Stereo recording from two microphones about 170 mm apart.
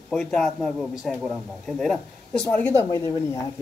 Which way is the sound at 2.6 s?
15° left (ahead or behind).